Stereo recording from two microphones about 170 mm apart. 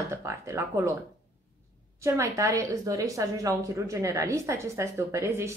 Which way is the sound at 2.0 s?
20° right (ahead or behind).